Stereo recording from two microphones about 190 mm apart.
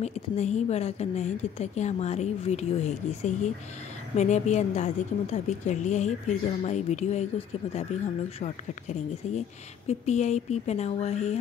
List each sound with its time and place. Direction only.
0.0 s a woman's voice: 35° left (ahead or behind)